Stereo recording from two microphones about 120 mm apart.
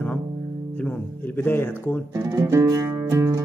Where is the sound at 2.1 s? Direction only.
25° right (ahead or behind).